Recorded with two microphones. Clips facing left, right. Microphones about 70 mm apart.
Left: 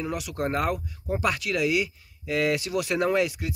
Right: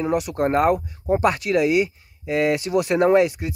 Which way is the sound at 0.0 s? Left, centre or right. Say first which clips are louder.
Right 8 dB; right.